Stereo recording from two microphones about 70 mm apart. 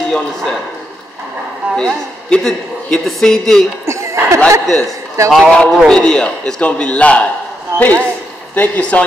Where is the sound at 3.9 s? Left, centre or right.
Right.